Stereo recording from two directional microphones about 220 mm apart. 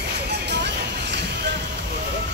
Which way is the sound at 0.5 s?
50° right (ahead or behind).